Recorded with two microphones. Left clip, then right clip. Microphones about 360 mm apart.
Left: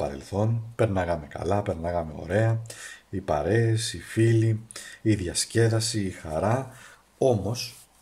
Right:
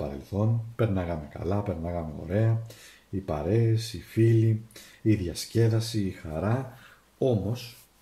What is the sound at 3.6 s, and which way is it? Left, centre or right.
Speech, left.